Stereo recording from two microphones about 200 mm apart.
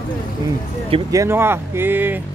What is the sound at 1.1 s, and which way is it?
Speech, 15° right (ahead or behind).